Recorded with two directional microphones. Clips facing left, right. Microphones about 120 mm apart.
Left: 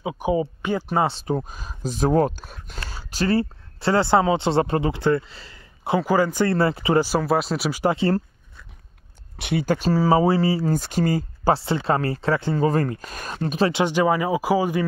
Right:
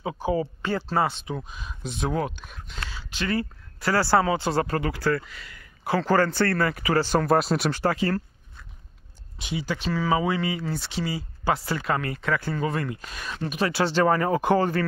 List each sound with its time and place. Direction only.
0.0 s speech: 15° left (ahead or behind)
1.2 s speech: 40° left (ahead or behind)
5.9 s speech: 10° left (ahead or behind)
6.5 s speech: 25° left (ahead or behind)
7.0 s speech: 5° left (ahead or behind)
7.8 s speech: 25° left (ahead or behind)
9.4 s speech: 60° left (ahead or behind)
11.5 s speech: 30° left (ahead or behind)
13.7 s speech: 15° left (ahead or behind)